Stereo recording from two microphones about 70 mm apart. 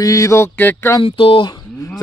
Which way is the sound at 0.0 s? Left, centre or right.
Left.